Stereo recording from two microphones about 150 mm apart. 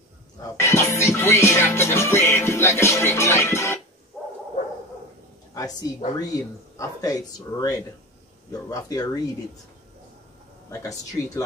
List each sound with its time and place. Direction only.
0.4 s music: 20° left (ahead or behind)
5.5 s a woman's voice: 25° left (ahead or behind)
10.7 s speech: 20° left (ahead or behind)